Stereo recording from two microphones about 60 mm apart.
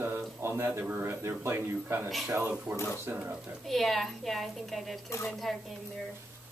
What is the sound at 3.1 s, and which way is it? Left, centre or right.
Speech, right.